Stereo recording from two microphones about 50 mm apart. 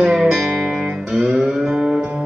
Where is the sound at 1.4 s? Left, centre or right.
Centre.